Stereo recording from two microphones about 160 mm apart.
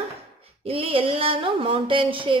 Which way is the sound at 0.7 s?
35° right (ahead or behind).